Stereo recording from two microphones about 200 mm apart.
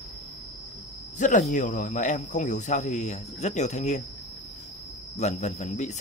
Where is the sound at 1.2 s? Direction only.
40° left (ahead or behind).